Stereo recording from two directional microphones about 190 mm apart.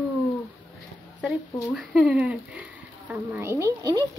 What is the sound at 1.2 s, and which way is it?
Speech, 5° right (ahead or behind).